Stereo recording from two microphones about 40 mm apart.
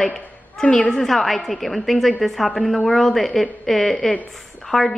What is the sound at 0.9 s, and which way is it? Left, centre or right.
A woman's voice, centre.